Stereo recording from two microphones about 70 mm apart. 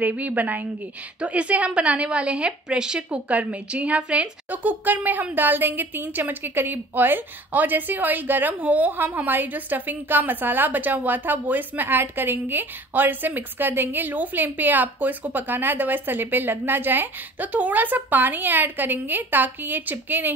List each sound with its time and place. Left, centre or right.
0.0 s a woman's voice: right